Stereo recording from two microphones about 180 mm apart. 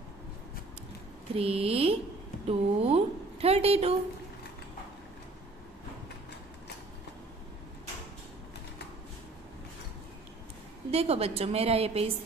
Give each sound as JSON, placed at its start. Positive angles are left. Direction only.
{"t": 1.3, "sound": "a woman's voice", "side_deg": -35}
{"t": 10.9, "sound": "a woman's voice", "side_deg": -35}